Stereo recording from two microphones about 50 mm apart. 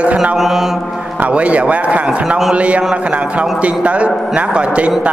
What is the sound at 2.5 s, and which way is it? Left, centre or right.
Speech, right.